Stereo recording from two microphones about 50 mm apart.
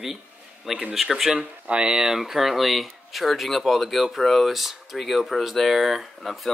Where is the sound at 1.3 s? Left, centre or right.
Centre.